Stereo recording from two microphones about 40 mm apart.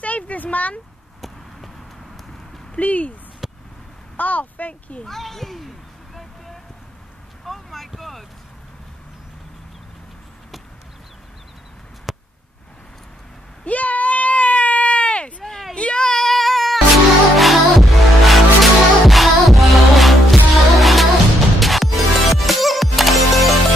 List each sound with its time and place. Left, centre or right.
0.0 s speech: left
2.8 s speech: left
3.4 s a sound: centre
4.2 s speech: left
5.0 s a child's voice: centre
7.4 s boat: centre
12.1 s a sound: centre
13.7 s sheep: left
15.7 s music: left; by 23.5 s centre